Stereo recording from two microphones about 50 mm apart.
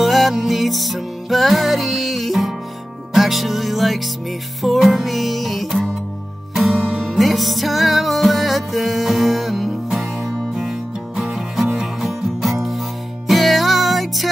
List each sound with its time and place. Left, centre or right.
0.0 s music: centre